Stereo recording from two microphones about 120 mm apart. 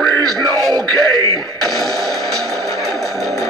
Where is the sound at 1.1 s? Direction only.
25° left (ahead or behind).